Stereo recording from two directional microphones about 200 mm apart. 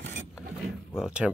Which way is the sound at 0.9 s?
5° right (ahead or behind).